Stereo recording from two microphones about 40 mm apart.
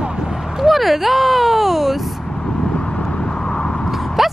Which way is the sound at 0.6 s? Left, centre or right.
Centre.